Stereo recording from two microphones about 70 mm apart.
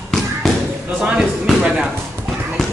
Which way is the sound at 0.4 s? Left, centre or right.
Centre.